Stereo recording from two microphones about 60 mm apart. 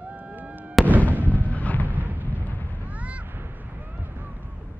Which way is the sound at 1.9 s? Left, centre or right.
Right.